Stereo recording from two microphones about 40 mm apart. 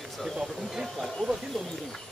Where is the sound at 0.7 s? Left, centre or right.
Centre.